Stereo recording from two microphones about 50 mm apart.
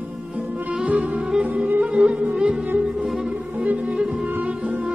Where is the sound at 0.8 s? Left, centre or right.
Right.